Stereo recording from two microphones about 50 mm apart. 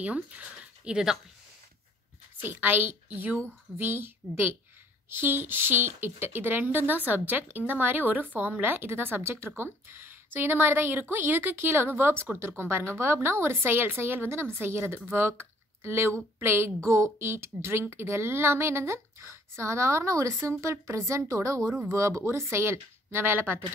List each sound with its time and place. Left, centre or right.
0.0 s speech: right
2.5 s speech: right
3.7 s a woman's voice: right
9.2 s a woman's voice: right
13.6 s a woman's voice: right
21.1 s speech: right